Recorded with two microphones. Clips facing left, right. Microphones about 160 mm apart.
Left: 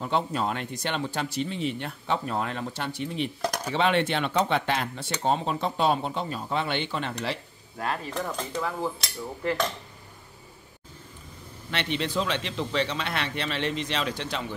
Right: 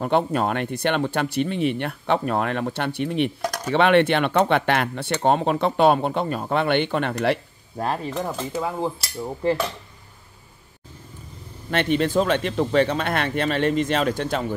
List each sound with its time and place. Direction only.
0.0 s speech: 60° right (ahead or behind)
7.7 s cutlery: 35° right (ahead or behind)
9.2 s a sound: 30° right (ahead or behind)
11.7 s speech: 50° right (ahead or behind)